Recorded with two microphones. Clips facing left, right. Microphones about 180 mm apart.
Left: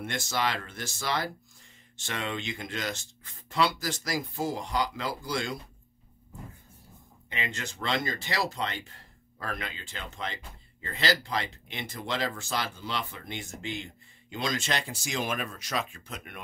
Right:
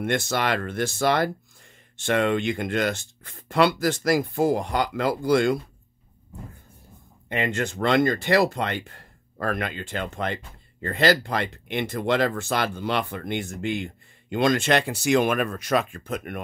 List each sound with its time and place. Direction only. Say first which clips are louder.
0.0 s speech: right 6 dB; 60° right (ahead or behind)
7.2 s speech: right 11 dB; 55° right (ahead or behind)